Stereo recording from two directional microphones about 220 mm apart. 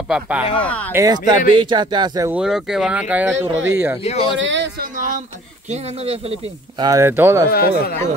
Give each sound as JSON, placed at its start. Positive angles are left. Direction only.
{"t": 0.1, "sound": "speech", "side_deg": -5}
{"t": 0.7, "sound": "speech", "side_deg": 5}
{"t": 0.9, "sound": "speech", "side_deg": -15}
{"t": 2.3, "sound": "speech", "side_deg": 0}
{"t": 4.0, "sound": "speech", "side_deg": 30}
{"t": 4.4, "sound": "speech", "side_deg": -55}
{"t": 4.8, "sound": "a sound", "side_deg": -35}
{"t": 5.7, "sound": "speech", "side_deg": -30}
{"t": 6.8, "sound": "speech", "side_deg": -15}
{"t": 7.5, "sound": "speech", "side_deg": 45}